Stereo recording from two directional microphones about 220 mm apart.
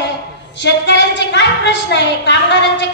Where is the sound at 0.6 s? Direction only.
55° left (ahead or behind).